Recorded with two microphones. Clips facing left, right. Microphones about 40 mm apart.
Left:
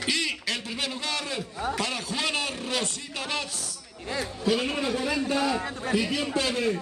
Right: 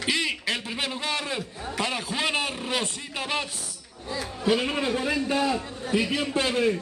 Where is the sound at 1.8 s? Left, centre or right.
Centre.